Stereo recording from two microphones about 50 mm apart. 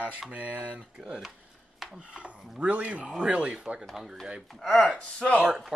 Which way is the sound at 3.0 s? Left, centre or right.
Centre.